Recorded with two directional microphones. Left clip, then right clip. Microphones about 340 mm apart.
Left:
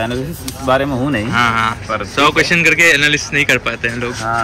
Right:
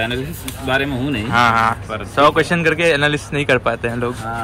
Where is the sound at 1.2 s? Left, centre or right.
Centre.